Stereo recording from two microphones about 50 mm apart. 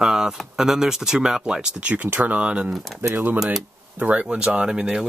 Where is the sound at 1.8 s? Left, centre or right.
Right.